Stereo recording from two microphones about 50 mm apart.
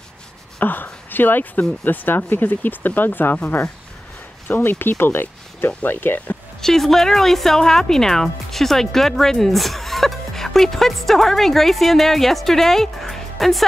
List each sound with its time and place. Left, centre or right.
0.6 s speech: left
4.5 s speech: left
6.6 s speech: centre